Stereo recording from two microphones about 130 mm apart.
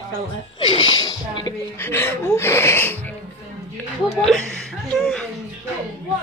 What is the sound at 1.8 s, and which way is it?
Speech, 20° left (ahead or behind).